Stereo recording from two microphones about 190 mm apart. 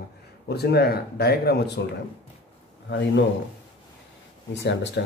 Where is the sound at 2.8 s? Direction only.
65° left (ahead or behind).